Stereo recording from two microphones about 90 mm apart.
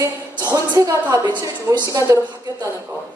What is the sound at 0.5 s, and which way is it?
A woman's voice, 40° right (ahead or behind).